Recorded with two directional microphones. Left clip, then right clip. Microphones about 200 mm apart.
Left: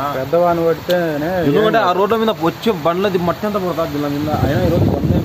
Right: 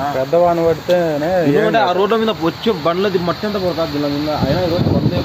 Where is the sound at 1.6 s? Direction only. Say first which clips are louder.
Even; 25° left (ahead or behind).